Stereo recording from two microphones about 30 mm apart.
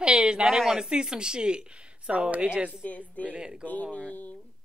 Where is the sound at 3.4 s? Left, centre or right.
Right.